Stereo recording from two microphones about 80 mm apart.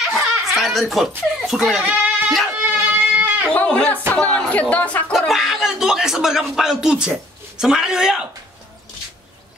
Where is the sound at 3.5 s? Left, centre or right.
Centre.